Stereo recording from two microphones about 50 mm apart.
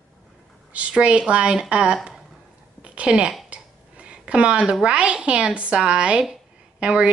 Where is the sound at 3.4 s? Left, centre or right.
Right.